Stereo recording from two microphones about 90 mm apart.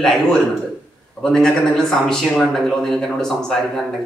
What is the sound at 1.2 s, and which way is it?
Speech, 5° left (ahead or behind).